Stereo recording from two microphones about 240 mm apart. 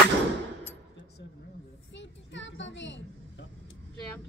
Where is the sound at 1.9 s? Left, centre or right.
Left.